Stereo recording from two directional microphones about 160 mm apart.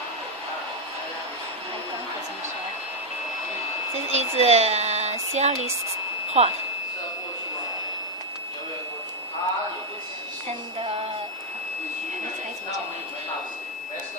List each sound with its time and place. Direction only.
3.9 s speech: 40° right (ahead or behind)